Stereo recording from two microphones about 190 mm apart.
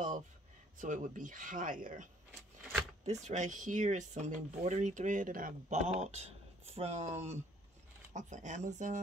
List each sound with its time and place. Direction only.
0.7 s speech: 40° right (ahead or behind)
3.3 s speech: 40° right (ahead or behind)